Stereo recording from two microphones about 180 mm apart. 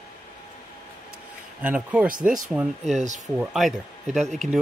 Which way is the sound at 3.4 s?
Centre (ahead or behind).